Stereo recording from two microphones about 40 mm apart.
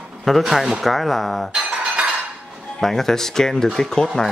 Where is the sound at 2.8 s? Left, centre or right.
Centre.